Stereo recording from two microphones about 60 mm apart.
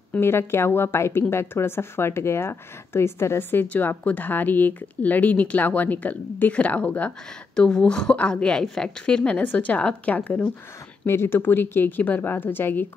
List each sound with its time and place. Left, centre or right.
0.2 s speech: left
3.6 s speech: left
11.1 s speech: left